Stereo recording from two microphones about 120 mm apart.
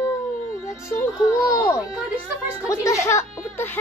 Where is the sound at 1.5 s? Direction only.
25° left (ahead or behind).